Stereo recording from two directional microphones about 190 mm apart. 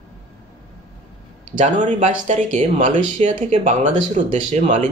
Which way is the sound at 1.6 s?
40° right (ahead or behind).